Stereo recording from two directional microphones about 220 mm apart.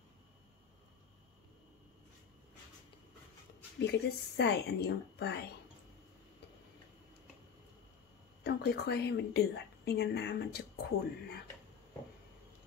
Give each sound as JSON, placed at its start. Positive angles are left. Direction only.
{"t": 3.8, "sound": "a woman's voice", "side_deg": 50}
{"t": 8.5, "sound": "a woman's voice", "side_deg": 50}